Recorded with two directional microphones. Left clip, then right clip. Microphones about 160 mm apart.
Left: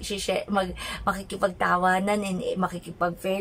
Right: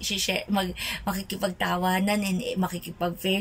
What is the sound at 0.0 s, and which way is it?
A woman's voice, centre (ahead or behind).